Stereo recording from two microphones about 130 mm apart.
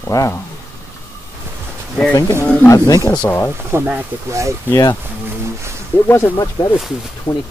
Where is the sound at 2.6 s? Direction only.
25° left (ahead or behind).